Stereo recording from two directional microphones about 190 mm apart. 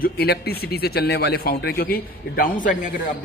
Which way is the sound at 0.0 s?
55° left (ahead or behind).